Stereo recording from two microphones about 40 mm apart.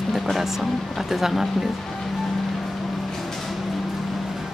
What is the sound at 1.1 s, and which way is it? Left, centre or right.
Speech, centre.